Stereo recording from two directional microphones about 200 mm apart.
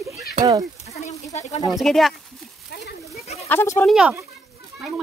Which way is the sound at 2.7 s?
50° left (ahead or behind).